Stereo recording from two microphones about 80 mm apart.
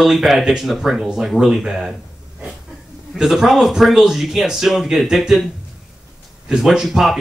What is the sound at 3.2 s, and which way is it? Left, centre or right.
Speech, centre.